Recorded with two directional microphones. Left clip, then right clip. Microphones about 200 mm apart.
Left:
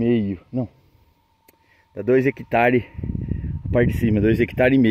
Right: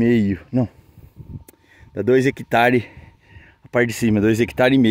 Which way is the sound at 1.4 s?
20° right (ahead or behind).